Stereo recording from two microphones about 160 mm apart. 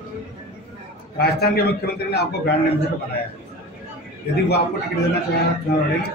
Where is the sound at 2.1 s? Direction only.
85° left.